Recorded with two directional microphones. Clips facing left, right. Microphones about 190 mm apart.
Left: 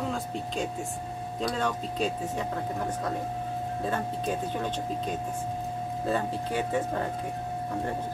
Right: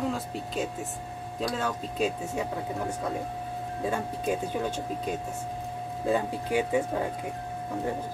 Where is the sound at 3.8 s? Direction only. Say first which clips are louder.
Right 2 dB; 10° right (ahead or behind).